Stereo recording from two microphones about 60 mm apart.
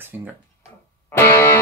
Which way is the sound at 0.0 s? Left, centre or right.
Right.